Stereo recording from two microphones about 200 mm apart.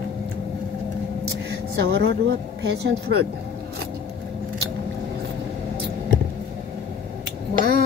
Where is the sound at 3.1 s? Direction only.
80° right.